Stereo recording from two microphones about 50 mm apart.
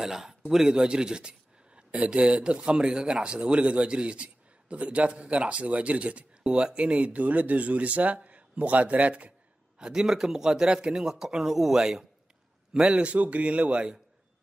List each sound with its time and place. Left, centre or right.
0.0 s a man's voice: centre; by 9.3 s right
9.8 s speech: centre
13.0 s speech: right